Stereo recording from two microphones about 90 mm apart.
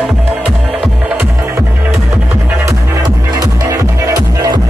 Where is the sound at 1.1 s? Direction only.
25° right (ahead or behind).